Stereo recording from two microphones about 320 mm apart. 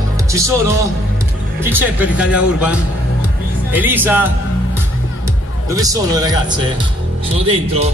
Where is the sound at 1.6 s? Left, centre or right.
Centre.